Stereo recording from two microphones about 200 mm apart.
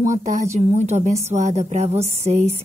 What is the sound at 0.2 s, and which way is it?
A woman's voice, 35° right (ahead or behind).